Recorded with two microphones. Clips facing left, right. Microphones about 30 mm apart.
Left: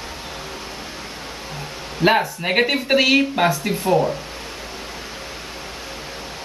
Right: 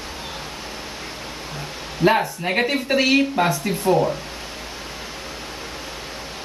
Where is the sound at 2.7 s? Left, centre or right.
Left.